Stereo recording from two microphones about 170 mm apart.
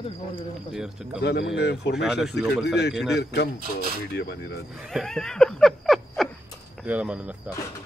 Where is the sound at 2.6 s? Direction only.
80° left.